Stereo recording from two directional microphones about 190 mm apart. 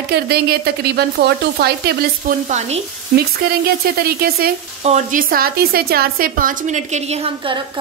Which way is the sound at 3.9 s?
55° right (ahead or behind).